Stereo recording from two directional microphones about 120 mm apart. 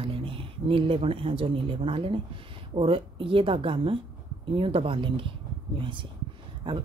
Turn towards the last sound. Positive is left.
turn(degrees=-45)  # may be behind; listen again after turning